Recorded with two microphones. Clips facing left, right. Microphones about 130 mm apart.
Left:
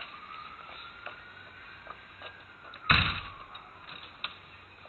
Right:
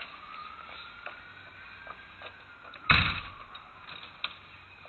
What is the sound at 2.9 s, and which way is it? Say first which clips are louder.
Slam: even; centre (ahead or behind).